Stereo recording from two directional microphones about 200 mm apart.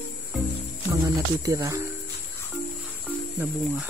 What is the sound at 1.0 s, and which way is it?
Speech, 15° right (ahead or behind).